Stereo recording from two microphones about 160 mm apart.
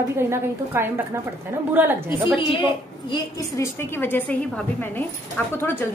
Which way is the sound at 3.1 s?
15° left (ahead or behind).